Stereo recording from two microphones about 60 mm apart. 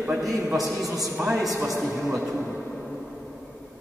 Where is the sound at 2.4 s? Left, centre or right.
Centre.